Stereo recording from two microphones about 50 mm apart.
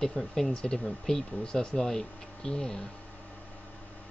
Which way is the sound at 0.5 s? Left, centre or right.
Centre.